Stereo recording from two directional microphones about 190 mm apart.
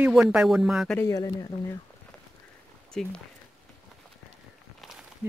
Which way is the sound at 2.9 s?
5° left (ahead or behind).